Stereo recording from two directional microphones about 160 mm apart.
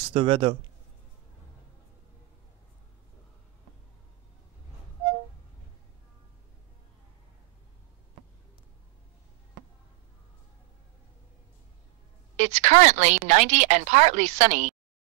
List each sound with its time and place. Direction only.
0.1 s speech: 35° right (ahead or behind)
12.4 s a woman's voice: 45° right (ahead or behind)